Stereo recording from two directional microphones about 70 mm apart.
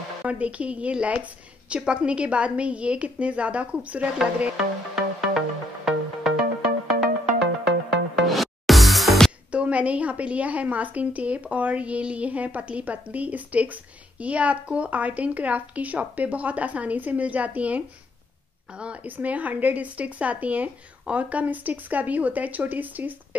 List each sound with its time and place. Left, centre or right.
0.2 s a woman's voice: centre
4.2 s music: centre
8.2 s music: centre
9.5 s a woman's voice: centre